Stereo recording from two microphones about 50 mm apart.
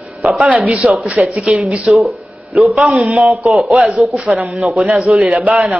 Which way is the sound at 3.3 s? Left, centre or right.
Centre.